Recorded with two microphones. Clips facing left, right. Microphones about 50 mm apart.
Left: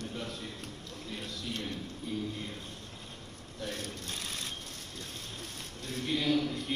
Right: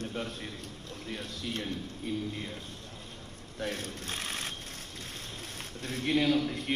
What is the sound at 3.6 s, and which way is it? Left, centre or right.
A man's voice, right.